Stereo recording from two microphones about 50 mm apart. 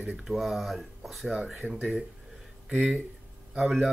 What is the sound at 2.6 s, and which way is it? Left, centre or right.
Speech, centre.